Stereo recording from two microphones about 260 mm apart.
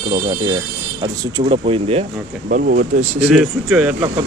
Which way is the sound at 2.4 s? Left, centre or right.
Right.